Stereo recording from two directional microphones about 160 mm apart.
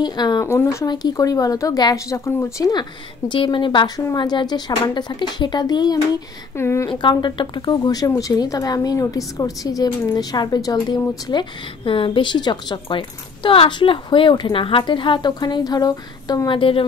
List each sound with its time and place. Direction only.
0.0 s a woman's voice: 25° left (ahead or behind)
6.9 s a woman's voice: 30° left (ahead or behind)